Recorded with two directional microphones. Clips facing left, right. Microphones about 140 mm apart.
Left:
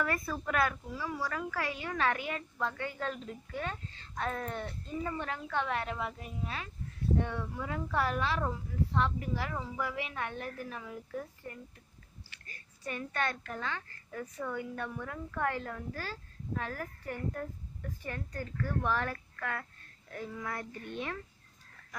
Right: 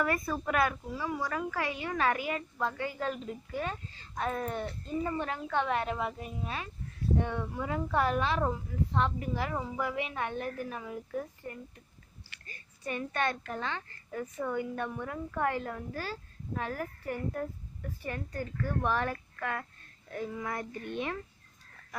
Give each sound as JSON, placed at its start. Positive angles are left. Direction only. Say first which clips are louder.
{"t": 0.0, "sound": "a woman's voice", "louder": "right 3 dB", "side_deg": -15}